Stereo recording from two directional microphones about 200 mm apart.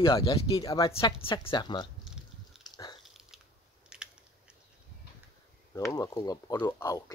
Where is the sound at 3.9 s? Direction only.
5° right (ahead or behind).